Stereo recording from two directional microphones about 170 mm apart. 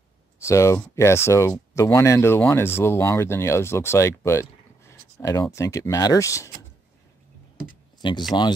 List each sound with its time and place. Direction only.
0.5 s speech: 15° left (ahead or behind)
8.0 s speech: 30° left (ahead or behind)